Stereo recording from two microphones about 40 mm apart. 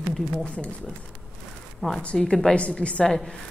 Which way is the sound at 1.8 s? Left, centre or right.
Centre.